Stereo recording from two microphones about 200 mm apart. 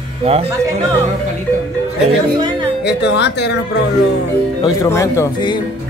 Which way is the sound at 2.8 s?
60° left (ahead or behind).